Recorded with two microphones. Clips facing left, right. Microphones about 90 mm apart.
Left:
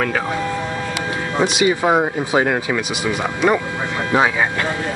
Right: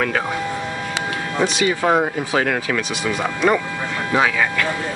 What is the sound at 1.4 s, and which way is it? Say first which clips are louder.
Speech: left 2 dB; 15° left (ahead or behind).